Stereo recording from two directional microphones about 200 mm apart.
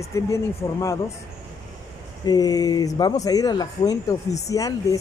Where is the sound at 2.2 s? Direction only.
20° left (ahead or behind).